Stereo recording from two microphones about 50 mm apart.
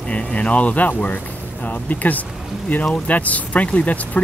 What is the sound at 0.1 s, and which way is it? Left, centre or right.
Speech, left.